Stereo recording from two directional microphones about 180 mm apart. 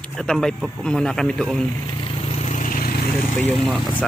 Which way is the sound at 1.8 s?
30° left (ahead or behind).